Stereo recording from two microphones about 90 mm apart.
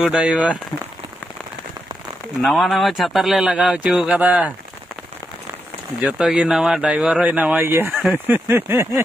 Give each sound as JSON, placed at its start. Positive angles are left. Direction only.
{"t": 0.0, "sound": "speech", "side_deg": -10}
{"t": 2.4, "sound": "a man's voice", "side_deg": 0}
{"t": 6.0, "sound": "speech", "side_deg": -10}
{"t": 8.1, "sound": "a sound", "side_deg": -20}